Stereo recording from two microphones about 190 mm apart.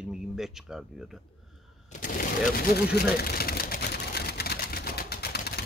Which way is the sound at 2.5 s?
55° left (ahead or behind).